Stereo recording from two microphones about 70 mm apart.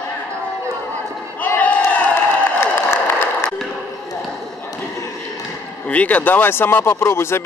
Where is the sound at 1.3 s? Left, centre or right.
Left.